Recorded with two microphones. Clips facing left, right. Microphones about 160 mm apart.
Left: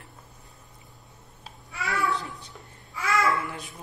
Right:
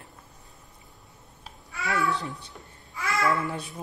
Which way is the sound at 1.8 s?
20° right (ahead or behind).